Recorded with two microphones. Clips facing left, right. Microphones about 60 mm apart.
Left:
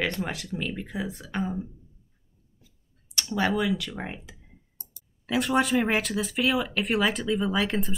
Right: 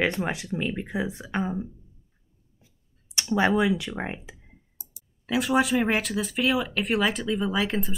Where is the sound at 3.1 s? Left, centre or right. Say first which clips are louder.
Right 4 dB; right.